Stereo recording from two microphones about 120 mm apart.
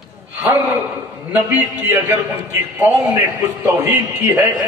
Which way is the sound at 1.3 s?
15° right (ahead or behind).